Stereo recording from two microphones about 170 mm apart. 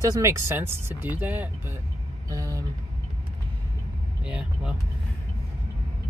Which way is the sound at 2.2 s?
20° right (ahead or behind).